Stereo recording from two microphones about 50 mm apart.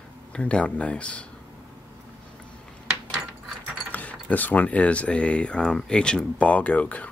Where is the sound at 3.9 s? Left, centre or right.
Left.